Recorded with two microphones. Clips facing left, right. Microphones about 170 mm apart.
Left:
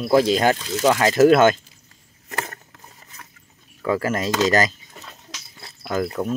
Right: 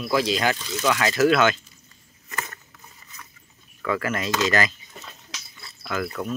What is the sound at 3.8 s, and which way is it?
Speech, 35° left (ahead or behind).